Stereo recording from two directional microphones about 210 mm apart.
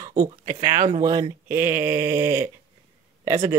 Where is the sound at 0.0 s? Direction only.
15° right (ahead or behind).